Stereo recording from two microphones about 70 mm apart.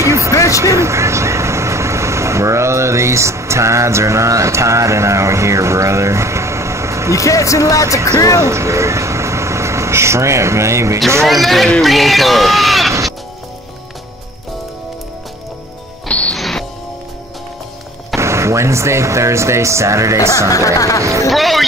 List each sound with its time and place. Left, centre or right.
0.0 s a sound: right
0.3 s a sound: left
0.6 s speech: right
7.2 s speech: left
8.4 s speech: right
11.2 s speech: centre
16.1 s music: centre
16.3 s music: centre
18.1 s speech: right
20.4 s speech: left
21.3 s speech: centre